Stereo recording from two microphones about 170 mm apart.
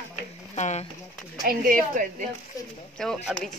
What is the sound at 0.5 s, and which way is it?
Speech, 45° left (ahead or behind).